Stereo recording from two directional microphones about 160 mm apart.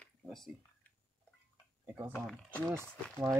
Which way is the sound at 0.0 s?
Centre (ahead or behind).